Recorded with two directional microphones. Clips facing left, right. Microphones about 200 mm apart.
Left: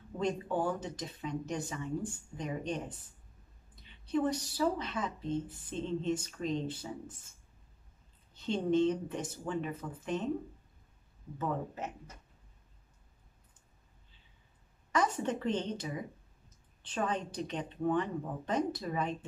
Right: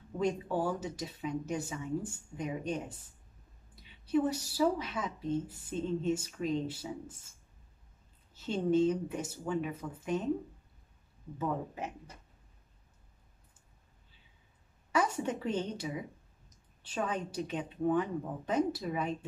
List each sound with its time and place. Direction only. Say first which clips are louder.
0.2 s a woman's voice: right 1 dB; 10° right (ahead or behind)
8.4 s a woman's voice: right 1 dB; 5° right (ahead or behind)
11.3 s a woman's voice: right 1 dB; 10° right (ahead or behind)
14.9 s speech: even; 10° right (ahead or behind)